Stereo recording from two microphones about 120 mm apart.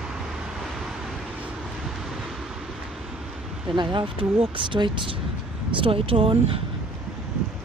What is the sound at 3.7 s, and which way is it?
Speech, 40° right (ahead or behind).